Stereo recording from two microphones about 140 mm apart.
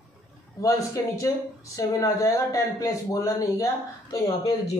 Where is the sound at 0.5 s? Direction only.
25° left (ahead or behind).